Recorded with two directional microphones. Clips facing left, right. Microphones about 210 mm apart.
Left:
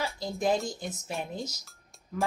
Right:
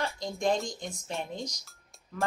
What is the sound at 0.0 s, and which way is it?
Speech, centre (ahead or behind).